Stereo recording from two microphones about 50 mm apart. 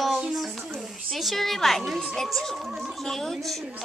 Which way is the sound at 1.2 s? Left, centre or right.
Centre.